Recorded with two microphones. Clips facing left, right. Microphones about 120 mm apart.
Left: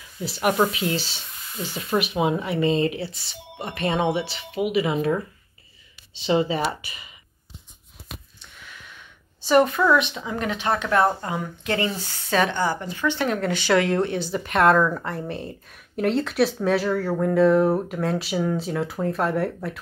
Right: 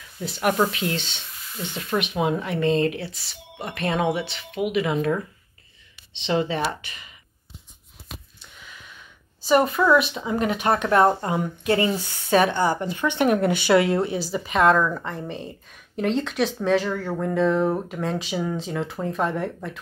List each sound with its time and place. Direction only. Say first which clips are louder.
0.2 s speech: left 1 dB; 5° left (ahead or behind)
9.4 s speech: left 1 dB; centre (ahead or behind)
11.1 s a woman's voice: right 3 dB; 25° right (ahead or behind)
12.3 s speech: right 3 dB; 15° right (ahead or behind); by 19.8 s 5° left (ahead or behind)